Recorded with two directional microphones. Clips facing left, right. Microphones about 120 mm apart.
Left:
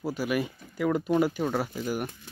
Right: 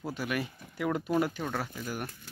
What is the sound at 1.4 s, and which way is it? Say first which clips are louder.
Speech: left 6 dB; 15° left (ahead or behind).